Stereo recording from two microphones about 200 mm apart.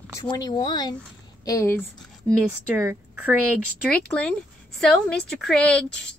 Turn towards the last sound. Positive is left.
turn(degrees=5)  # may be behind; listen again after turning